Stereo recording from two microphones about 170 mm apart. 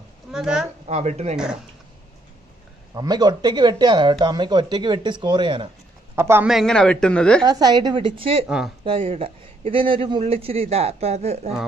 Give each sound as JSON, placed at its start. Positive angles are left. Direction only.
{"t": 0.3, "sound": "a woman's voice", "side_deg": -5}
{"t": 0.8, "sound": "a man's voice", "side_deg": -40}
{"t": 1.3, "sound": "speech", "side_deg": -5}
{"t": 2.9, "sound": "speech", "side_deg": -25}
{"t": 6.1, "sound": "a man's voice", "side_deg": -15}
{"t": 6.5, "sound": "speech", "side_deg": 5}
{"t": 7.4, "sound": "speech", "side_deg": -25}
{"t": 8.5, "sound": "speech", "side_deg": -5}
{"t": 8.8, "sound": "a man's voice", "side_deg": -35}